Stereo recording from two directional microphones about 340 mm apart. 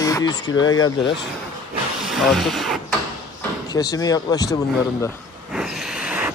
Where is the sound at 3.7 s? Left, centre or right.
Centre.